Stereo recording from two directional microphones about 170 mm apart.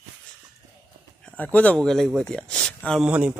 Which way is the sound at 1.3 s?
10° left (ahead or behind).